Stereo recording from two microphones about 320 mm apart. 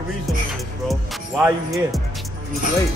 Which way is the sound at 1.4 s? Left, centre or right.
Centre.